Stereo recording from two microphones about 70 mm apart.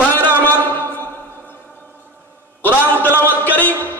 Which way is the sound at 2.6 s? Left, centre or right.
Left.